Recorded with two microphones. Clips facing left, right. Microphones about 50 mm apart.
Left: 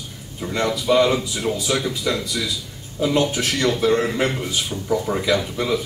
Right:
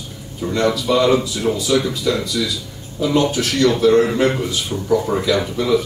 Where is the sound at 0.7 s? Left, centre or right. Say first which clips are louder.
Even; centre.